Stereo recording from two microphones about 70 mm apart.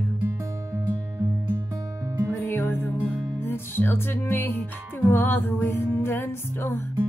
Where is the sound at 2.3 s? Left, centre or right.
Left.